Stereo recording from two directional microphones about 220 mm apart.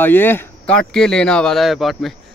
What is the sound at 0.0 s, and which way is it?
Speech, 10° left (ahead or behind).